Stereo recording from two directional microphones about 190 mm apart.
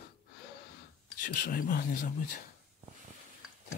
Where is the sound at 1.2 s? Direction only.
45° left (ahead or behind).